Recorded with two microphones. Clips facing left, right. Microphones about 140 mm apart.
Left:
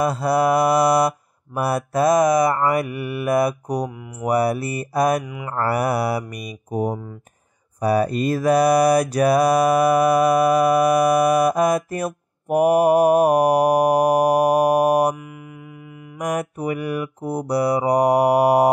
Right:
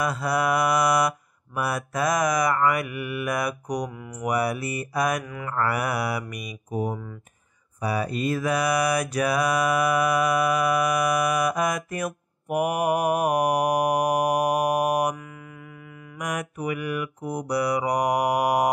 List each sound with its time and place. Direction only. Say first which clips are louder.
0.0 s mantra: left 6 dB; 30° left (ahead or behind)
16.2 s mantra: left 6 dB; 35° left (ahead or behind)